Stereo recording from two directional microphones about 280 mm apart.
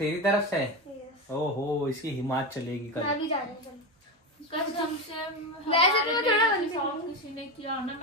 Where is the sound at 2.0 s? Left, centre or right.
Centre.